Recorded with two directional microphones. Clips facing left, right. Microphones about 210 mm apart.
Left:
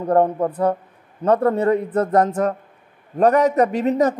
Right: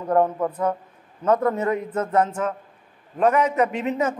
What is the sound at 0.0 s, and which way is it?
A man's voice, 35° left (ahead or behind).